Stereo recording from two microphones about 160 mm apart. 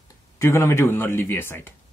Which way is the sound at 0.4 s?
15° left (ahead or behind).